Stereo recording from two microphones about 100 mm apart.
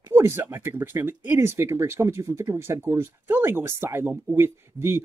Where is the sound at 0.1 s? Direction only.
25° right (ahead or behind).